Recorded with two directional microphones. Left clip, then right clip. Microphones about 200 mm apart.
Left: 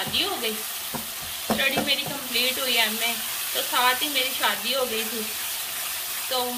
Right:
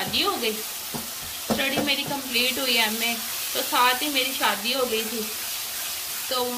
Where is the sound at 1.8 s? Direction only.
35° right (ahead or behind).